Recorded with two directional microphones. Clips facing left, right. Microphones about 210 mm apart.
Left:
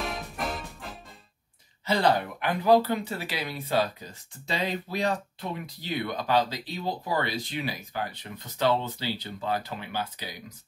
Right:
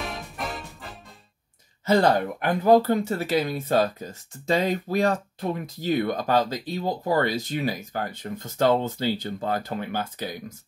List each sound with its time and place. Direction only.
0.0 s music: centre (ahead or behind)
1.9 s speech: 45° right (ahead or behind)